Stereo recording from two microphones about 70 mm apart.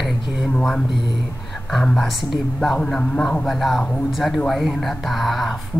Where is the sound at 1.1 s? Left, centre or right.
Centre.